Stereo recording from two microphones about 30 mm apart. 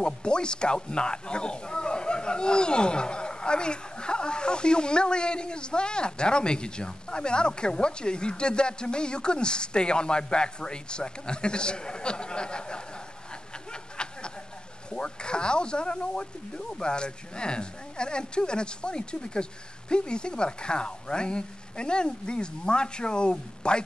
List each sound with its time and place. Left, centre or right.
0.0 s speech: left
14.0 s snicker: left
15.0 s speech: left